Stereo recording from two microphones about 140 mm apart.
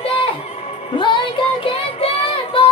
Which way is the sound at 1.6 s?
40° left (ahead or behind).